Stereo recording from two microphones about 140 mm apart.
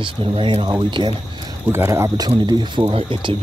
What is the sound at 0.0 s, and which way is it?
Speech, 35° right (ahead or behind).